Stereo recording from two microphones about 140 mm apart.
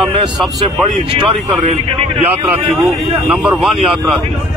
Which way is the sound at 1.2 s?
45° right (ahead or behind).